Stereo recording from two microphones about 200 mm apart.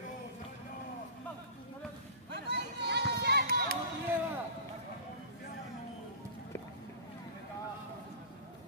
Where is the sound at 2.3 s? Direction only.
55° right (ahead or behind).